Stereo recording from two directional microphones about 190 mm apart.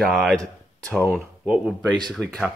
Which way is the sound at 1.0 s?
5° right (ahead or behind).